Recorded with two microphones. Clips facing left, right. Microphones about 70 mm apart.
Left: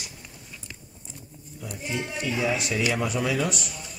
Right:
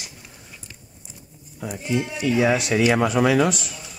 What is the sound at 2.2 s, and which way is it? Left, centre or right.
Speech, right.